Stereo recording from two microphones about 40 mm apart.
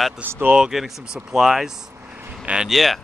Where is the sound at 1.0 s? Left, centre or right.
Right.